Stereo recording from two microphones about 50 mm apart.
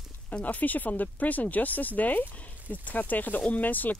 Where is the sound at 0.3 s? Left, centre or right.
Left.